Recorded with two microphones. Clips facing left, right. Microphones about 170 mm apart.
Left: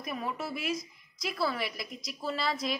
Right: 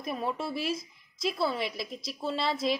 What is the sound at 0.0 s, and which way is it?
A woman's voice, 30° right (ahead or behind).